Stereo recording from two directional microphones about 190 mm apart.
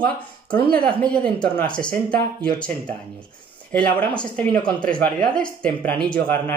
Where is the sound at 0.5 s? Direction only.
50° right (ahead or behind).